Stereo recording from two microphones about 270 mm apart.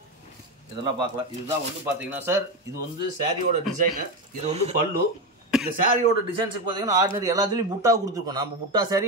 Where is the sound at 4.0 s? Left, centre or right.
Right.